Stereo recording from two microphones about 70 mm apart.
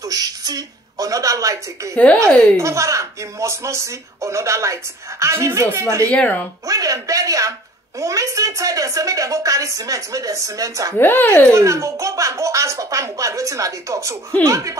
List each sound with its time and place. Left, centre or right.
0.1 s a woman's voice: right
6.0 s speech: left
6.7 s a woman's voice: right
11.0 s speech: left
11.2 s speech: centre
11.5 s a woman's voice: right